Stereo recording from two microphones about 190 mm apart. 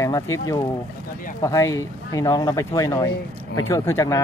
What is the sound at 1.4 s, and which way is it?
Speech, 15° left (ahead or behind).